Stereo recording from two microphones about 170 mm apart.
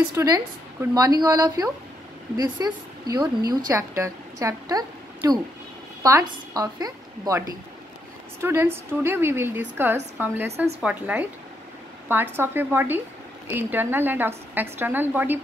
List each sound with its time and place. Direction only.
0.1 s a woman's voice: 20° right (ahead or behind)